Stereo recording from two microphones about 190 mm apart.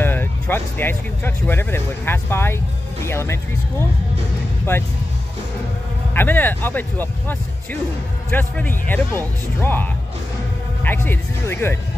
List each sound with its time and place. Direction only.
0.0 s speech: 10° left (ahead or behind)
6.1 s speech: 10° left (ahead or behind)